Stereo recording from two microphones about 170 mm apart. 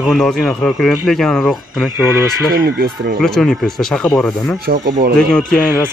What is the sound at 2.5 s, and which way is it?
Speech, 60° right (ahead or behind).